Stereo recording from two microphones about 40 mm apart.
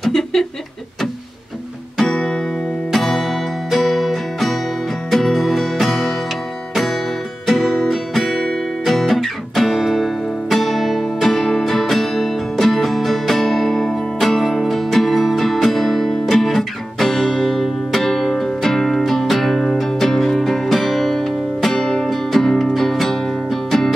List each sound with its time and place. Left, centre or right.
0.0 s a sound: centre
2.9 s music: centre
7.4 s guitar: centre
18.0 s music: centre
21.7 s music: centre